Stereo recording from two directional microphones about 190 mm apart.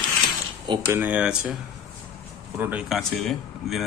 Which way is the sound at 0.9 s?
10° right (ahead or behind).